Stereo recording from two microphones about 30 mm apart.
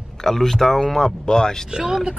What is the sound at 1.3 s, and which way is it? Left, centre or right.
Speech, left.